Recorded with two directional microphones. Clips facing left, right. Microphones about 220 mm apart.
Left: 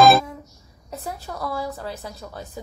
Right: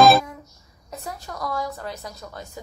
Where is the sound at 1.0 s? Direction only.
5° left (ahead or behind).